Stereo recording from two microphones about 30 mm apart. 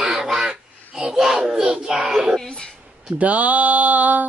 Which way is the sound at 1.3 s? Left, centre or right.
Centre.